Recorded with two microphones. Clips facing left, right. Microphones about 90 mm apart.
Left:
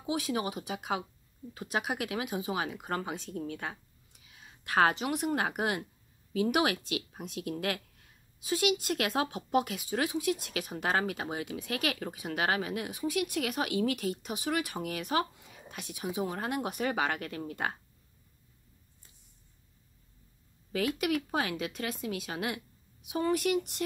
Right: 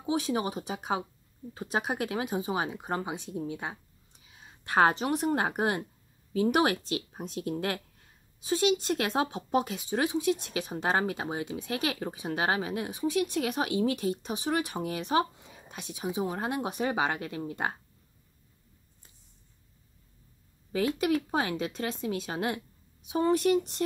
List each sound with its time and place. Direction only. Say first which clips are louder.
0.0 s speech: right 3 dB; 30° right (ahead or behind)
20.7 s speech: right 3 dB; 30° right (ahead or behind)